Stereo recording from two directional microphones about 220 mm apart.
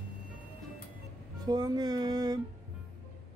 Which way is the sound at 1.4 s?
20° right (ahead or behind).